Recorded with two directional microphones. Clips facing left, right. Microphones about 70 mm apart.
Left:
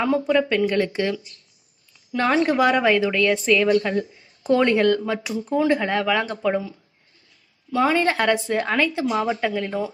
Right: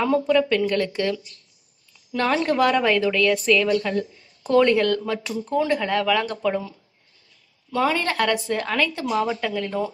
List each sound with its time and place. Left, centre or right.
0.0 s speech: centre
2.1 s a woman's voice: centre
7.7 s a woman's voice: centre